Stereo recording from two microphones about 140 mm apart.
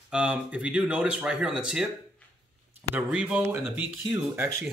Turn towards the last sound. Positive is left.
turn(degrees=-15)  # may be behind; listen again after turning